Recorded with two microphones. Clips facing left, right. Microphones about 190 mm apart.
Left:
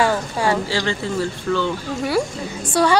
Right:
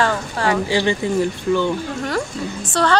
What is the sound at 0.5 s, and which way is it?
Speech, 15° right (ahead or behind).